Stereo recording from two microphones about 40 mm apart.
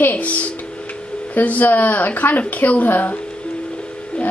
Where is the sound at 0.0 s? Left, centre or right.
Left.